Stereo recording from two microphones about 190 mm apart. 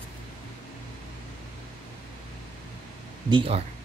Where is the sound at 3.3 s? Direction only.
30° right (ahead or behind).